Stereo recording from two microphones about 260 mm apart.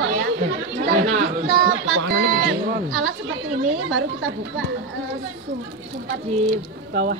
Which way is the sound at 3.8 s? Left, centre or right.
Right.